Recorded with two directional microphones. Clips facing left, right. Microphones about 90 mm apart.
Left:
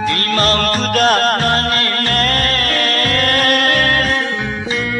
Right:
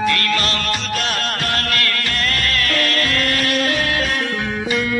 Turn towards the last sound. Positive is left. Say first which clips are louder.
# left 5 dB
turn(degrees=45)  # may be behind; listen again after turning